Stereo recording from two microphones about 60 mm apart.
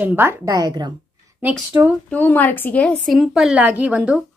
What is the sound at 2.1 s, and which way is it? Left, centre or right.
Speech, left.